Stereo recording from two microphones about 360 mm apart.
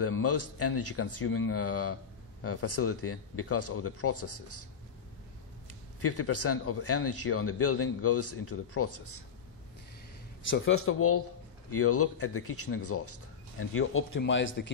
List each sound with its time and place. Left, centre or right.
0.0 s speech: left
6.0 s speech: left
10.5 s speech: left